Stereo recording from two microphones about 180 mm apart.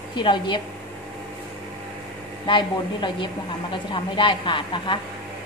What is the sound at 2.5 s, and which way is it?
A woman's voice, 25° left (ahead or behind).